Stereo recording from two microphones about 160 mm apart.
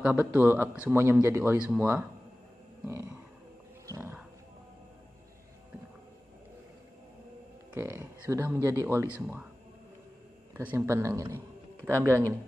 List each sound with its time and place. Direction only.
0.0 s a man's voice: 10° right (ahead or behind)
2.8 s roaring cats: 15° right (ahead or behind)
3.8 s wild animals: 15° right (ahead or behind)
7.7 s a man's voice: 15° right (ahead or behind)
10.5 s a man's voice: 10° right (ahead or behind)
11.3 s a sound: 15° right (ahead or behind)